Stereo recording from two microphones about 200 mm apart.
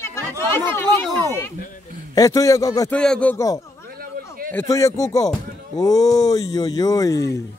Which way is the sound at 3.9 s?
50° right (ahead or behind).